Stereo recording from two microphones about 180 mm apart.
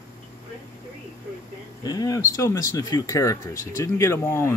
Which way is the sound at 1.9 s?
20° left (ahead or behind).